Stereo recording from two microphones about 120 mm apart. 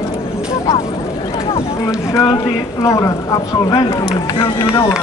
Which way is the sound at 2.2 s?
30° left (ahead or behind).